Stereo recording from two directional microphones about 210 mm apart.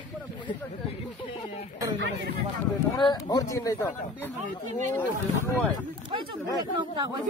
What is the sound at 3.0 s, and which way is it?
Speech, 20° left (ahead or behind).